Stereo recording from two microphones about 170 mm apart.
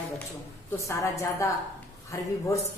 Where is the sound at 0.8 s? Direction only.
20° left (ahead or behind).